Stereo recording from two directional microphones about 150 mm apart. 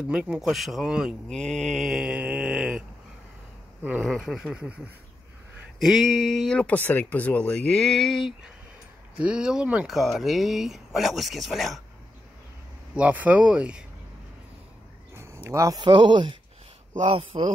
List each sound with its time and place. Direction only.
0.1 s speech: 5° right (ahead or behind)
3.8 s speech: 5° right (ahead or behind)
12.9 s speech: 10° right (ahead or behind)
15.1 s speech: 20° right (ahead or behind); by 17.5 s 35° right (ahead or behind)